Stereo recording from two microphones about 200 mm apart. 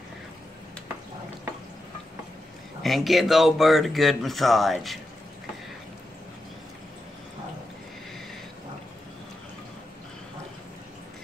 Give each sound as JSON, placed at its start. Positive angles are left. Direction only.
{"t": 2.8, "sound": "speech", "side_deg": 0}